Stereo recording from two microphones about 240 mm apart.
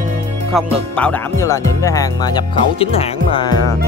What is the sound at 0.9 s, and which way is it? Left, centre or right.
Speech, centre.